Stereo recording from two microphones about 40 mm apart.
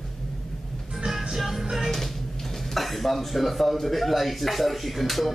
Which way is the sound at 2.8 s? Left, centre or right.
Centre.